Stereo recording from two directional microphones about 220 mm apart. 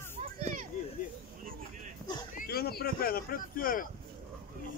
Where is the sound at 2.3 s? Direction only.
45° left (ahead or behind).